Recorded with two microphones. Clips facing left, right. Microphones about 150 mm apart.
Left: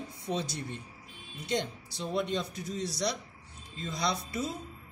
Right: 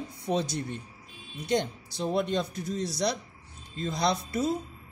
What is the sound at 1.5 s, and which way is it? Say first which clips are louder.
Speech: right 5 dB; 50° right (ahead or behind).